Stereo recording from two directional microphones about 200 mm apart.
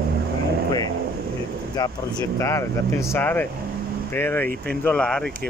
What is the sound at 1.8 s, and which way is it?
Speech, 15° left (ahead or behind).